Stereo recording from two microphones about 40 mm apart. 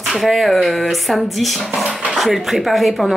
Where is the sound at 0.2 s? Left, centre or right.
Centre.